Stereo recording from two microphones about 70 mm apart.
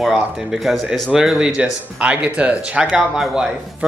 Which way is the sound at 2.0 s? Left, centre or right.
Centre.